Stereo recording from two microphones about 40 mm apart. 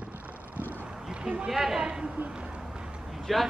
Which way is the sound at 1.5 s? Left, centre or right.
Centre.